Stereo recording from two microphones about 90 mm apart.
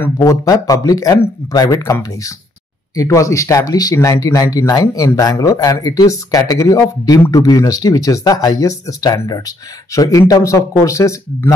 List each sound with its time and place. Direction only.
0.2 s speech: 45° left (ahead or behind)
3.0 s speech: 40° left (ahead or behind)